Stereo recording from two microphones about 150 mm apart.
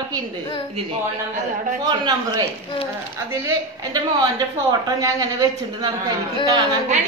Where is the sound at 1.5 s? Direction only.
60° right (ahead or behind).